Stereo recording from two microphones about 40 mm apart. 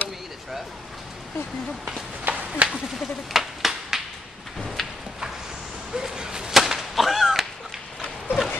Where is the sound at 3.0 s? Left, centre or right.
Centre.